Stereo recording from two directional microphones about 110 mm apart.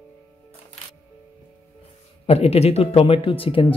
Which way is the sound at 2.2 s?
65° left (ahead or behind).